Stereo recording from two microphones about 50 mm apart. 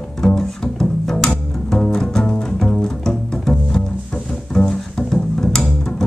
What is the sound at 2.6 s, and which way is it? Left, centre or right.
Double bass, centre.